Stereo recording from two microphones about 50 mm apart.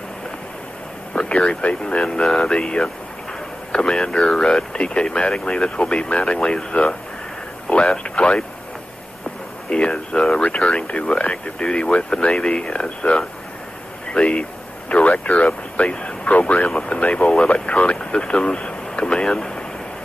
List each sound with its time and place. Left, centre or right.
1.1 s speech: left
2.1 s speech: centre
9.7 s speech: centre